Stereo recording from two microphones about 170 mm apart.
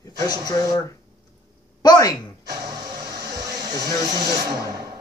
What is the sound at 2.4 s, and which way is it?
Music, 20° right (ahead or behind).